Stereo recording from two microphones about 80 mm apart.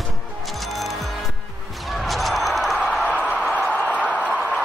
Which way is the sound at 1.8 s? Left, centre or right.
Centre.